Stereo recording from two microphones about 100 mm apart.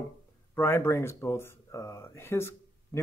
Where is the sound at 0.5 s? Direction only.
25° left (ahead or behind).